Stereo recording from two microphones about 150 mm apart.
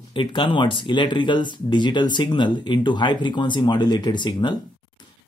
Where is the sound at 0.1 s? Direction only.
35° left (ahead or behind).